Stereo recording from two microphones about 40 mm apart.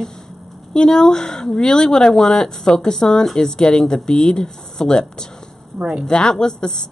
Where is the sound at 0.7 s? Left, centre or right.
Centre.